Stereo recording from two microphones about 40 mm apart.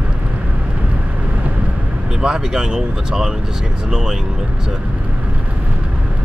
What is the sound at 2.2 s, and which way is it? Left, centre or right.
Speech, centre.